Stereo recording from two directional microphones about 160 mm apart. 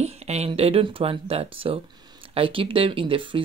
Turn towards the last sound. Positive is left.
turn(degrees=-35)  # may be behind; listen again after turning